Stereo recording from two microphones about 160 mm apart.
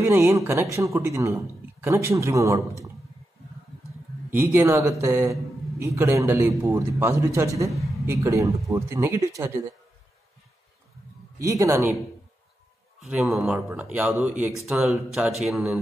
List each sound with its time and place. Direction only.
0.0 s speech: 15° right (ahead or behind)
4.3 s speech: 15° right (ahead or behind)
11.3 s speech: 20° right (ahead or behind)
13.0 s speech: 5° right (ahead or behind)